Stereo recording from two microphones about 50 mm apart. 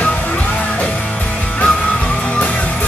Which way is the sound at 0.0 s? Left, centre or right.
Left.